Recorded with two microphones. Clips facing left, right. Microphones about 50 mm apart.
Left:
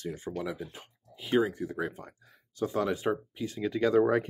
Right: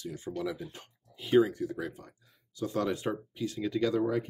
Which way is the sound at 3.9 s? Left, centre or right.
Left.